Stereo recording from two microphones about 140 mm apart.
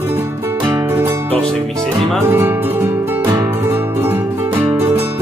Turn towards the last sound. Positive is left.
turn(degrees=-20)  # may be behind; listen again after turning